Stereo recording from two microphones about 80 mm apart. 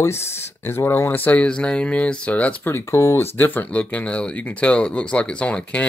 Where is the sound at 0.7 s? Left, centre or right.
Left.